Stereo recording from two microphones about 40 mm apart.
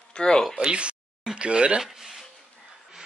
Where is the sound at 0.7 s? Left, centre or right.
Right.